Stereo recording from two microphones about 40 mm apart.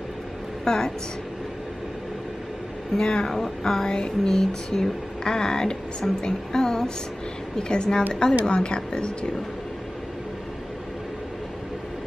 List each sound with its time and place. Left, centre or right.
0.7 s speech: centre
3.0 s speech: centre